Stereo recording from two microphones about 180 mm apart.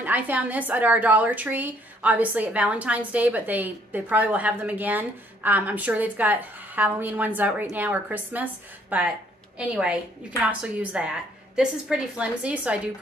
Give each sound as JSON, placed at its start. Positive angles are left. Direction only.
{"t": 0.0, "sound": "a woman's voice", "side_deg": -10}